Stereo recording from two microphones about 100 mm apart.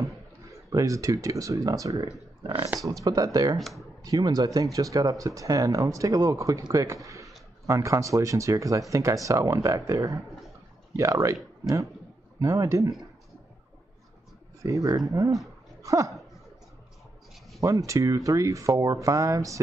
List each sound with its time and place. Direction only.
0.0 s speech: 30° right (ahead or behind)
3.5 s speech: centre (ahead or behind)
4.0 s speech: 40° right (ahead or behind)
12.4 s speech: 35° right (ahead or behind)
14.6 s speech: 30° right (ahead or behind)
17.6 s speech: 35° right (ahead or behind)